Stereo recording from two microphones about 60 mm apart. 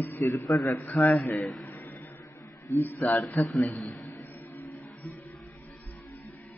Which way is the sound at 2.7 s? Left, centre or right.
Left.